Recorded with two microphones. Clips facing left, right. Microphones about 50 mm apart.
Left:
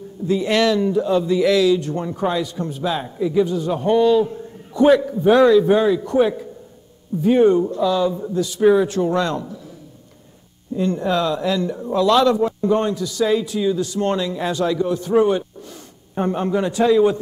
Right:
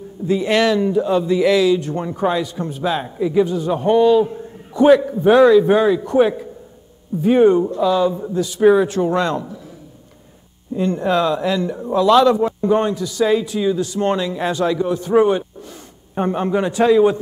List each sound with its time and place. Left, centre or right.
0.3 s a man's voice: centre
5.0 s a man's voice: right
7.2 s a man's voice: centre
10.8 s a man's voice: right